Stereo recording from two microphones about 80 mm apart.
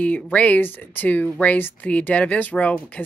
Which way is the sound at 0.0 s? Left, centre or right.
Centre.